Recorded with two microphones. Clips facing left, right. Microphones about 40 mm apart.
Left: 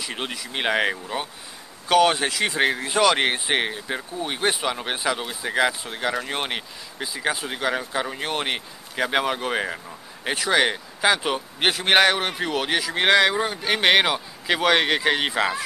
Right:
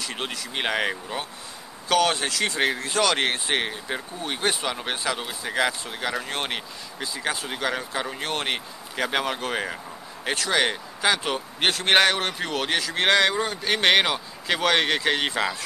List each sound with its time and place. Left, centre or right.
0.0 s speech: centre